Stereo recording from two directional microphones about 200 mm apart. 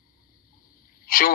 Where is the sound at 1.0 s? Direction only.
45° left (ahead or behind).